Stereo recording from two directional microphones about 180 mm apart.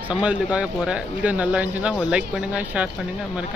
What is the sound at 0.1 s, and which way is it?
Speech, 5° right (ahead or behind).